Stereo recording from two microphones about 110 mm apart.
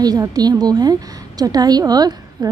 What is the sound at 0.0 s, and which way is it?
A woman's voice, 35° right (ahead or behind).